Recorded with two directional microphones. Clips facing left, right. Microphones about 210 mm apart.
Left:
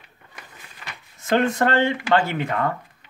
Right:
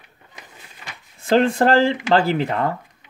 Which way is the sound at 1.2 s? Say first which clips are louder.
Right 4 dB; 30° right (ahead or behind).